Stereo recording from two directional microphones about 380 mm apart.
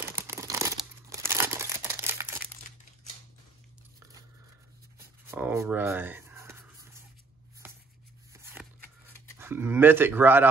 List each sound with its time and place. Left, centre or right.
0.0 s crumpling: centre
5.3 s writing: centre
9.4 s speech: centre